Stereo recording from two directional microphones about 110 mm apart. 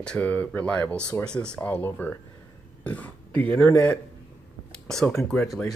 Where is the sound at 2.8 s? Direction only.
15° left (ahead or behind).